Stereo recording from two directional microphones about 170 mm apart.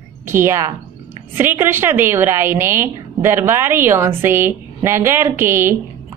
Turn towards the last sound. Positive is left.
turn(degrees=-15)  # may be behind; listen again after turning